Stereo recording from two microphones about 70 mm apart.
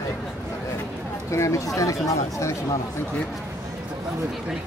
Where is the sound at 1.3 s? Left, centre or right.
Left.